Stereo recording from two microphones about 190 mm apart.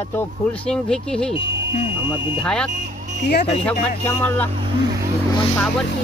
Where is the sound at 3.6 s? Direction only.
5° left (ahead or behind).